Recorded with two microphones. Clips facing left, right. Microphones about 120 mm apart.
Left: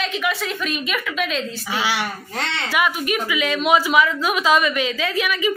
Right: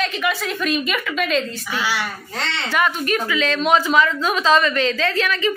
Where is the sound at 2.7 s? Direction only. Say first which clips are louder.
Right 2 dB; 10° left (ahead or behind).